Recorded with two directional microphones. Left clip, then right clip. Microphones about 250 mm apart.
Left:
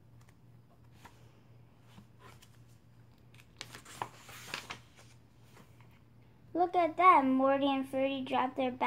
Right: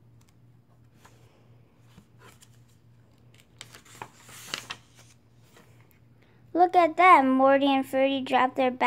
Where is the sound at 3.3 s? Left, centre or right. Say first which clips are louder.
Right 1 dB; centre.